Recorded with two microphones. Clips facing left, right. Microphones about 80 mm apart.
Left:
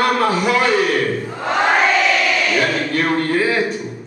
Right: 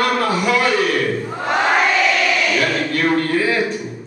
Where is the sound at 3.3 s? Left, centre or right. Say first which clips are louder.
Left 1 dB; left.